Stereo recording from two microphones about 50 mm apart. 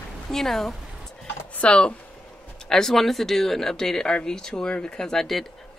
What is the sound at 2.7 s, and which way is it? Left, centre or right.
Speech, centre.